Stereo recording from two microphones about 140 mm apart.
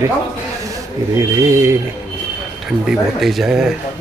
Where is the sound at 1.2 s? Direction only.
20° right (ahead or behind).